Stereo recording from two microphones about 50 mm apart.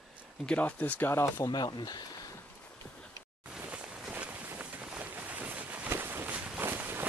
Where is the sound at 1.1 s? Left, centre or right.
Left.